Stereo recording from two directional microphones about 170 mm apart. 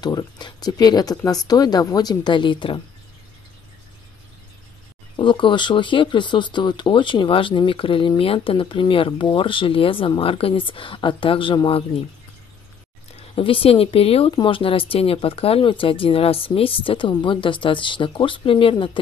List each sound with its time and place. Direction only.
0.0 s speech: 25° left (ahead or behind)
5.1 s speech: 30° left (ahead or behind)
13.1 s speech: 35° left (ahead or behind)